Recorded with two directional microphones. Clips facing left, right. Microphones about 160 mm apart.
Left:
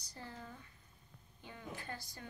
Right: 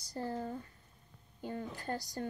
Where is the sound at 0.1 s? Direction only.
40° right (ahead or behind).